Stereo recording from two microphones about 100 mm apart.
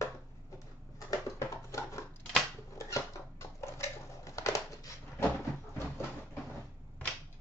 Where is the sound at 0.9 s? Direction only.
30° left (ahead or behind).